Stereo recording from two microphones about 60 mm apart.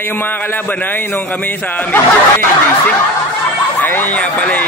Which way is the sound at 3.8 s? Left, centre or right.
Left.